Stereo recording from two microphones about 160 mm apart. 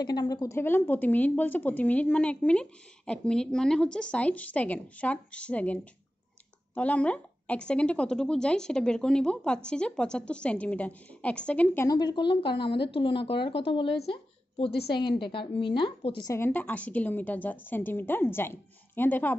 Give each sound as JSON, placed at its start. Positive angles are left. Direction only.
{"t": 0.0, "sound": "speech", "side_deg": 25}
{"t": 11.9, "sound": "a woman's voice", "side_deg": 25}
{"t": 14.0, "sound": "a sound", "side_deg": 35}
{"t": 15.0, "sound": "a woman's voice", "side_deg": 30}
{"t": 16.3, "sound": "speech", "side_deg": 15}